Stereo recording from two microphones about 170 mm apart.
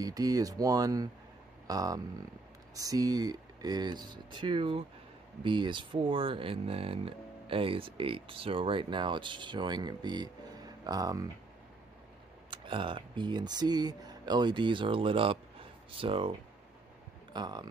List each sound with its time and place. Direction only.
0.0 s speech: 20° right (ahead or behind)
12.4 s speech: 30° right (ahead or behind)